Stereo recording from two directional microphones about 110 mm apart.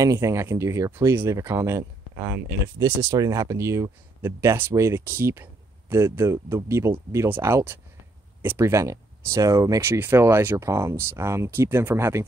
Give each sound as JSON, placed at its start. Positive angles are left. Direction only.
{"t": 0.0, "sound": "speech", "side_deg": -30}